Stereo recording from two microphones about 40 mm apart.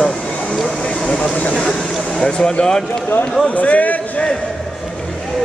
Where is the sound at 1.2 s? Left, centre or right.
Left.